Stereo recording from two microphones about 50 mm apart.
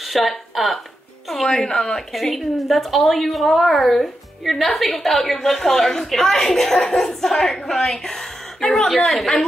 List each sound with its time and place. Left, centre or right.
0.0 s speech: centre
1.5 s a woman's voice: centre
2.1 s a woman's voice: centre